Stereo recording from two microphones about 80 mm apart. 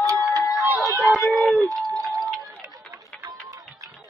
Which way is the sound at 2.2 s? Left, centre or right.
Centre.